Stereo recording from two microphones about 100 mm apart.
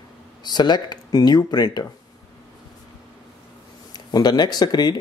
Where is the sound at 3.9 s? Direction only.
45° left (ahead or behind).